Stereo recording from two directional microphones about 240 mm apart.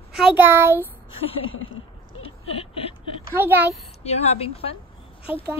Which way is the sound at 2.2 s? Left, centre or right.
Left.